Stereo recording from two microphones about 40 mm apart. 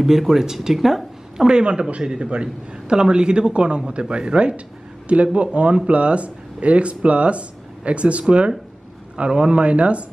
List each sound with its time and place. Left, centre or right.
0.0 s speech: centre
1.5 s a man's voice: right